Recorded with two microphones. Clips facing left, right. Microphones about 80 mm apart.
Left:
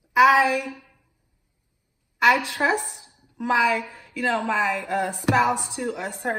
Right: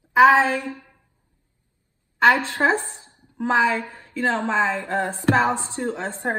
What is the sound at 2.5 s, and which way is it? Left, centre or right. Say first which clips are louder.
A man's voice: right 2 dB; right.